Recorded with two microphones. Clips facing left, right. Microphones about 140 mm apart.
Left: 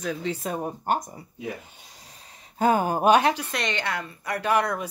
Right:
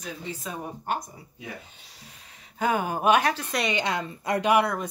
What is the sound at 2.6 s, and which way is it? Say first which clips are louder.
Speech: left 4 dB; 40° left (ahead or behind).